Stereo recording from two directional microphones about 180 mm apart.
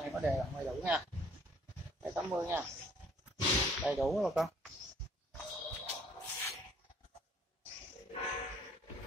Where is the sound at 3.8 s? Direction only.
Centre (ahead or behind).